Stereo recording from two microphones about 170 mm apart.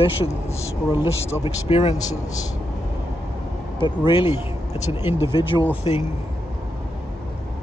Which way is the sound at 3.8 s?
30° left (ahead or behind).